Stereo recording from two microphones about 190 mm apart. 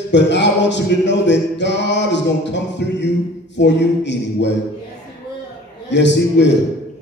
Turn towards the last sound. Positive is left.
turn(degrees=70)  # may be behind; listen again after turning